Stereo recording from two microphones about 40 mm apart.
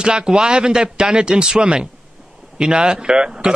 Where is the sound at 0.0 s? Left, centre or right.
Right.